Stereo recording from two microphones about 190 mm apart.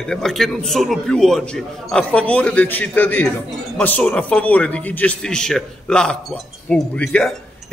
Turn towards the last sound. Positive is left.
turn(degrees=5)  # may be behind; listen again after turning